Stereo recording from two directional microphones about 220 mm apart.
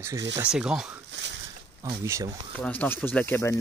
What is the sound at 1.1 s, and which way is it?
Boat, 55° right (ahead or behind).